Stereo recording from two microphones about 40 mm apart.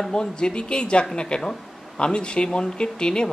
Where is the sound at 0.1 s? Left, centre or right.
Centre.